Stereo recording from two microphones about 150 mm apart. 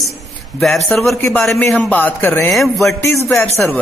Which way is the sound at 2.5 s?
Centre (ahead or behind).